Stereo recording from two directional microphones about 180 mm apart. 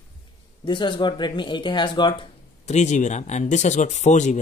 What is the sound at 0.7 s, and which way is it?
Speech, 25° left (ahead or behind).